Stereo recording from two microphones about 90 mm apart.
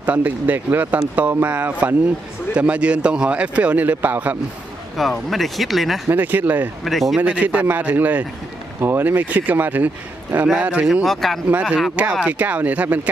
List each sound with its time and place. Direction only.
0.0 s speech: 15° right (ahead or behind)
4.9 s speech: centre (ahead or behind)
6.0 s speech: 20° right (ahead or behind)
6.8 s speech: centre (ahead or behind)
7.2 s speech: 15° right (ahead or behind)
11.1 s speech: 5° left (ahead or behind); by 13.1 s 15° right (ahead or behind)